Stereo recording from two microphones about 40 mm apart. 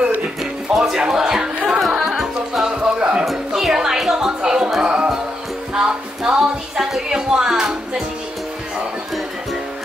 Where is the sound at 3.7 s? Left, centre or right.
Centre.